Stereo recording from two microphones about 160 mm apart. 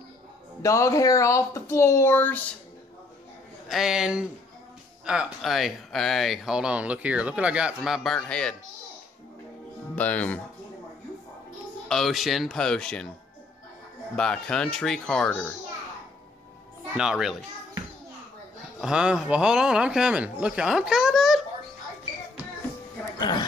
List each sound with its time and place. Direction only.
0.6 s speech: 20° left (ahead or behind)
3.6 s speech: centre (ahead or behind)
9.9 s speech: 10° left (ahead or behind)
11.9 s speech: centre (ahead or behind)
14.1 s speech: 5° left (ahead or behind)
16.9 s speech: 5° right (ahead or behind)
18.8 s speech: 5° right (ahead or behind)
23.1 s music: 30° left (ahead or behind)